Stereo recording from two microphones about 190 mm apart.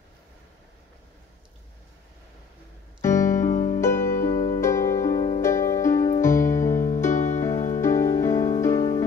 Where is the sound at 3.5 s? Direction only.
40° left (ahead or behind).